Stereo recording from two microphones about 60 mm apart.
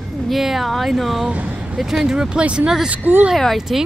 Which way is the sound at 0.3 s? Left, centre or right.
Centre.